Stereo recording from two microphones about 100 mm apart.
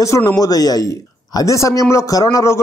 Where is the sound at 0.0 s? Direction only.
30° left (ahead or behind).